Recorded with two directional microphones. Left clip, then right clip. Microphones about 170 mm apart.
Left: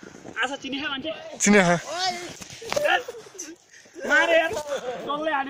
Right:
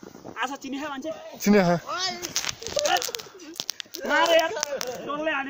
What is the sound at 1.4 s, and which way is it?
Speech, centre (ahead or behind).